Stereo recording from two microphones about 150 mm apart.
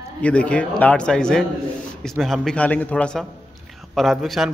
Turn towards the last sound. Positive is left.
turn(degrees=0)  # may be behind; listen again after turning